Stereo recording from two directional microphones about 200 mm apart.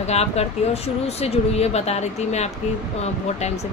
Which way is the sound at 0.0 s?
30° left (ahead or behind).